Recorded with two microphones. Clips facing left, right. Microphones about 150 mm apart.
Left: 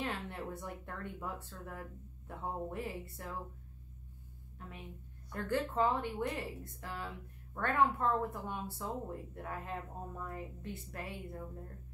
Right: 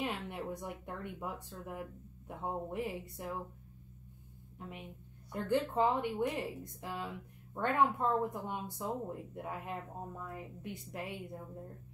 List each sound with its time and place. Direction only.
0.0 s speech: 15° right (ahead or behind)
4.6 s a woman's voice: 20° right (ahead or behind)